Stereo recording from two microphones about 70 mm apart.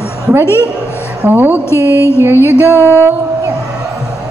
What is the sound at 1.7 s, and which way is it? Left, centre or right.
Music, left.